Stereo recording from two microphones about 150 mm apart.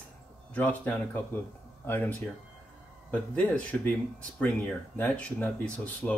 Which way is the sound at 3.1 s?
10° left (ahead or behind).